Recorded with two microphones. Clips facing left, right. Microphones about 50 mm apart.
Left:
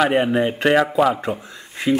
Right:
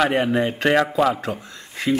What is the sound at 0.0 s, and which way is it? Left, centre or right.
Speech, centre.